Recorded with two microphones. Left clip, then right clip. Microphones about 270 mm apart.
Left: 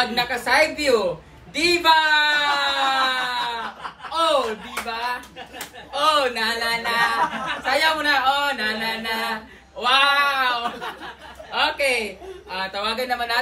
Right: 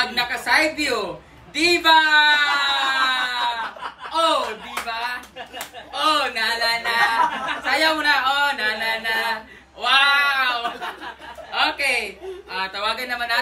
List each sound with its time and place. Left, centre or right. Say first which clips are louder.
0.0 s speech: even; centre
4.1 s snicker: right 1 dB; centre
4.8 s speech: left 1 dB; centre